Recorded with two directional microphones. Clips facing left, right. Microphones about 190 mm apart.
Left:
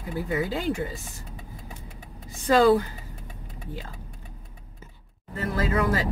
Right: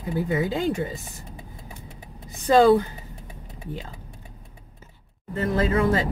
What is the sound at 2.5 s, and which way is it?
Speech, 20° right (ahead or behind).